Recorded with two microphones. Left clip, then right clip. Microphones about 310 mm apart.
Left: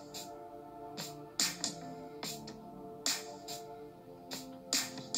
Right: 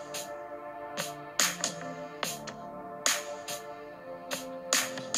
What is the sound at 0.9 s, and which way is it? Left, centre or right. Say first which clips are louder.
Music: right 7 dB; right.